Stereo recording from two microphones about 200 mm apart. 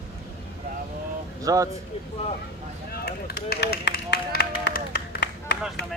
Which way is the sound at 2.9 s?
50° left (ahead or behind).